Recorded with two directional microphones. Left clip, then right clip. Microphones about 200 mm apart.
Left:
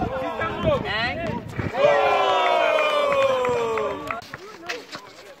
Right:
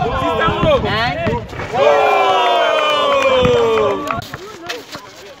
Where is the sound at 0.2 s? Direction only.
40° right (ahead or behind).